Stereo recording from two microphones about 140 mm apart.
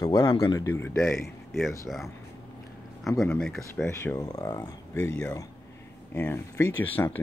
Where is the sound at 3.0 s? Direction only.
5° left (ahead or behind).